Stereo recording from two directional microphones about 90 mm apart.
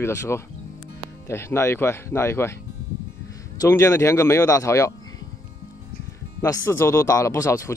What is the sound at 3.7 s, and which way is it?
Speech, 35° left (ahead or behind).